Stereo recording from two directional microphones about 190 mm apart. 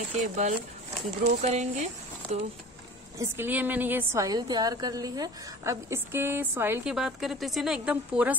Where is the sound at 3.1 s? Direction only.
10° right (ahead or behind).